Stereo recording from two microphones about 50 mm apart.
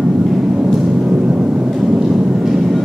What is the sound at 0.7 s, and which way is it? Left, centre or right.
Vehicle, centre.